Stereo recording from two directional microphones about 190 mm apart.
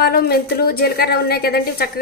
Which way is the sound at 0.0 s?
55° left (ahead or behind).